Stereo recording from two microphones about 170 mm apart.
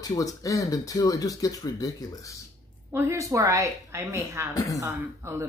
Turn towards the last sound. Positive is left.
turn(degrees=-15)  # may be behind; listen again after turning